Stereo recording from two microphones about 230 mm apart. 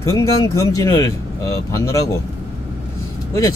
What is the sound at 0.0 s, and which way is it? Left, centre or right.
Speech, centre.